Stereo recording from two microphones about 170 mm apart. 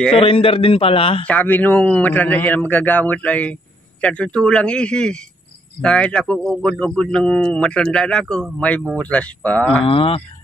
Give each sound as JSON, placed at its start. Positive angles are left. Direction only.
{"t": 0.2, "sound": "a man's voice", "side_deg": 35}
{"t": 1.2, "sound": "a man's voice", "side_deg": 10}
{"t": 9.8, "sound": "a man's voice", "side_deg": 35}